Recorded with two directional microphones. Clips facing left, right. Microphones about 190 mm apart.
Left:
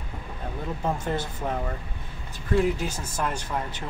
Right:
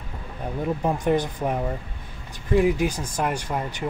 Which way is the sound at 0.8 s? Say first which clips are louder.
Right 5 dB; 15° right (ahead or behind).